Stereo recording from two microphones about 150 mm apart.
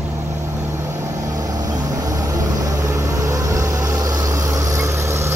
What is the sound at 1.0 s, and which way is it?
Vehicle, 25° right (ahead or behind).